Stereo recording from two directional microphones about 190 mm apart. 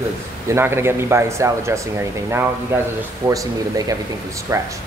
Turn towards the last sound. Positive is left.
turn(degrees=-15)  # may be behind; listen again after turning